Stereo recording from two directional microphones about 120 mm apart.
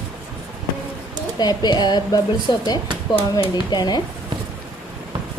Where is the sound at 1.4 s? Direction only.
35° left (ahead or behind).